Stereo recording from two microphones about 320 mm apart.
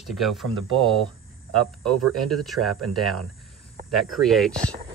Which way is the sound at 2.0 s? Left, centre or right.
Right.